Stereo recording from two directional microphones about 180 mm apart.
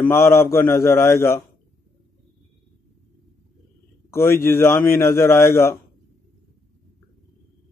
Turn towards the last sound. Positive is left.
turn(degrees=15)  # may be behind; listen again after turning